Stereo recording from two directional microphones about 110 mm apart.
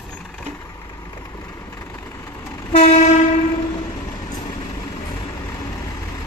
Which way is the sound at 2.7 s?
90° left.